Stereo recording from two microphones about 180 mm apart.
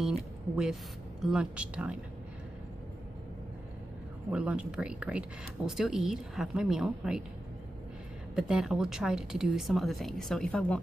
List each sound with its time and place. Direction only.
0.0 s speech: 5° right (ahead or behind)
4.3 s speech: 5° right (ahead or behind)
8.4 s speech: 5° right (ahead or behind)